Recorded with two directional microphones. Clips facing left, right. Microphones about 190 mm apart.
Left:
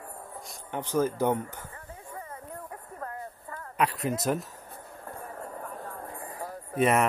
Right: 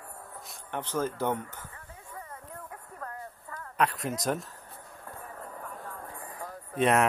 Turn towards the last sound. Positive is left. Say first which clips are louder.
# left 1 dB
turn(degrees=5)  # may be behind; listen again after turning